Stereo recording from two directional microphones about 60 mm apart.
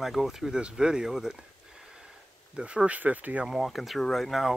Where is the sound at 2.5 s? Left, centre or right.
Centre.